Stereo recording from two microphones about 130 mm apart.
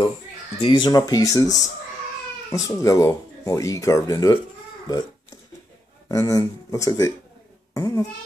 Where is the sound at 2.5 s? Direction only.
25° left (ahead or behind).